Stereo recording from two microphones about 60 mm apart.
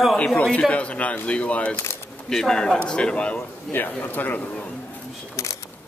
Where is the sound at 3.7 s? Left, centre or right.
Left.